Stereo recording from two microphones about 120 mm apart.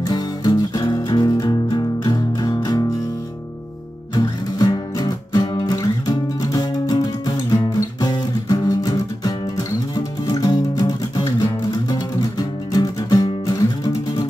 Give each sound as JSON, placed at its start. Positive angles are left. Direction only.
{"t": 0.0, "sound": "music", "side_deg": 35}
{"t": 4.1, "sound": "music", "side_deg": 35}